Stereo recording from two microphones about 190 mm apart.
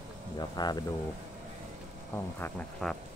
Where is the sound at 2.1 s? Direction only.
10° left (ahead or behind).